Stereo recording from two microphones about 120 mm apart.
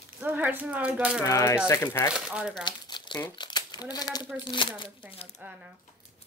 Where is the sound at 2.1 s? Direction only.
5° right (ahead or behind).